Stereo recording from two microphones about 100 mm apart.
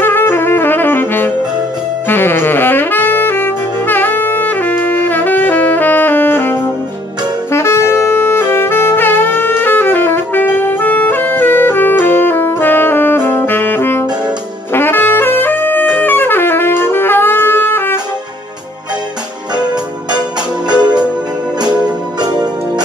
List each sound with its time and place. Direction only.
0.0 s saxophone: 20° left (ahead or behind)
14.7 s brass instrument: 20° left (ahead or behind)
19.5 s music: 45° right (ahead or behind)
22.2 s music: 45° right (ahead or behind)